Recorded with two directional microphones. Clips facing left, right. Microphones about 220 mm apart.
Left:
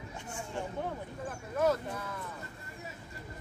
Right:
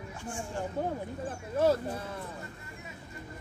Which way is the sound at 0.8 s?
35° right (ahead or behind).